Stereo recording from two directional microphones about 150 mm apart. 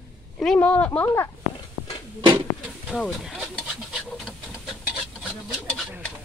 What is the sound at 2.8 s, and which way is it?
Speech, centre (ahead or behind).